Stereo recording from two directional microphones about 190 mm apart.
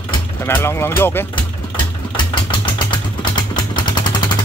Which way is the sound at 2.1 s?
25° left (ahead or behind).